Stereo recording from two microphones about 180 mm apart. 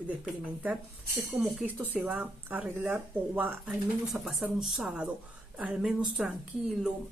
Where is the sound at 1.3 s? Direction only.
10° right (ahead or behind).